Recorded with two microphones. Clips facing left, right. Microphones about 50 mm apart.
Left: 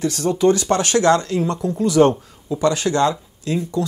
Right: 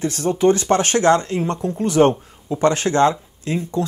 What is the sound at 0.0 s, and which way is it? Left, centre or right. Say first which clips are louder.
Speech: even; right.